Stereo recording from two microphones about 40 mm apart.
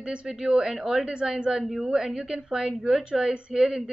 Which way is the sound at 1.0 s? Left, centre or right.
Centre.